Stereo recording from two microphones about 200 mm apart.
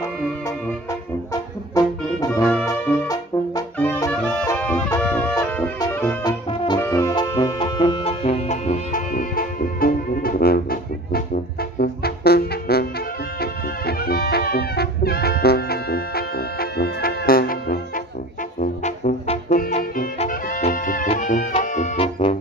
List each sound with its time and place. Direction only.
1.8 s music: 15° left (ahead or behind)
2.1 s brass instrument: 15° left (ahead or behind)
3.7 s music: 10° left (ahead or behind); by 18.0 s 45° left (ahead or behind)
18.9 s brass instrument: 40° left (ahead or behind)
20.2 s music: 45° left (ahead or behind)